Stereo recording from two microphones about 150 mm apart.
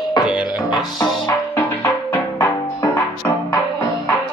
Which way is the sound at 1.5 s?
15° left (ahead or behind).